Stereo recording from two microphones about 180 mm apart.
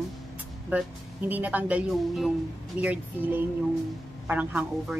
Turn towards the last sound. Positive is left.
turn(degrees=-10)  # may be behind; listen again after turning